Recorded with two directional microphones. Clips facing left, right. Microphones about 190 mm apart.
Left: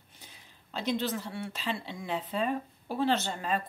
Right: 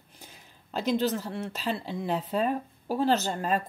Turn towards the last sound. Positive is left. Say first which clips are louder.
# right 4 dB
turn(degrees=-45)  # may be behind; listen again after turning